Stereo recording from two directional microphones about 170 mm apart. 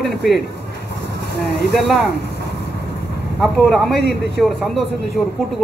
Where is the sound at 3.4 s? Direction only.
Centre (ahead or behind).